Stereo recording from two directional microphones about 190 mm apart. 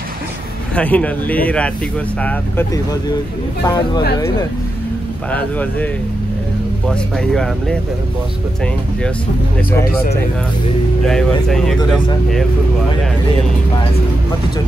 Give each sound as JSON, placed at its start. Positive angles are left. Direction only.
{"t": 0.7, "sound": "speech", "side_deg": 10}
{"t": 5.3, "sound": "speech", "side_deg": 10}
{"t": 6.9, "sound": "speech", "side_deg": 5}
{"t": 11.1, "sound": "speech", "side_deg": 0}